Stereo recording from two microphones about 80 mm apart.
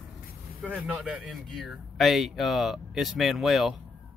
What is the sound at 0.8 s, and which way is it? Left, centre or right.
Speech, centre.